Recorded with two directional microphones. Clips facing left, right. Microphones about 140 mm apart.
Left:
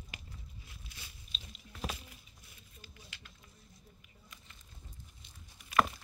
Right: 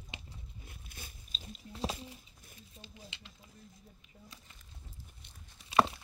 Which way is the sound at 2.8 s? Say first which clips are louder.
Right 4 dB; 20° right (ahead or behind).